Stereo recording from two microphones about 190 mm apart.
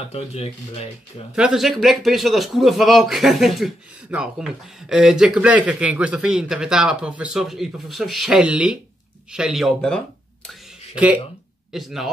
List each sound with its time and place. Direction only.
0.1 s speech: 30° left (ahead or behind)
1.3 s speech: 5° right (ahead or behind)
11.7 s speech: centre (ahead or behind)